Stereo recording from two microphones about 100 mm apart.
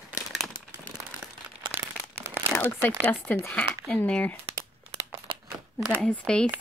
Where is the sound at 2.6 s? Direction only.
20° left (ahead or behind).